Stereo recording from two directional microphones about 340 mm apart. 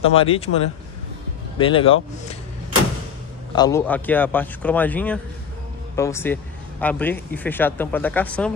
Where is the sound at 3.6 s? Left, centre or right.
Centre.